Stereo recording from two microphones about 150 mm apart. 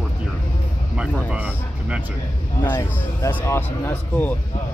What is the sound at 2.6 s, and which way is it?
Speech, 15° left (ahead or behind).